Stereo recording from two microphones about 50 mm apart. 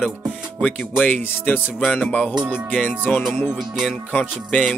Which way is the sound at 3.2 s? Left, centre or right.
Centre.